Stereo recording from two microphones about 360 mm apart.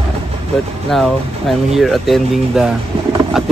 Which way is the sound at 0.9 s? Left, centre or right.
Centre.